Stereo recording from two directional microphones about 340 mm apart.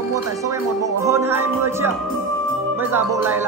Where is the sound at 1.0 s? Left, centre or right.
Centre.